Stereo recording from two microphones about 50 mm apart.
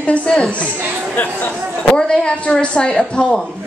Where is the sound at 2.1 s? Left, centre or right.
Centre.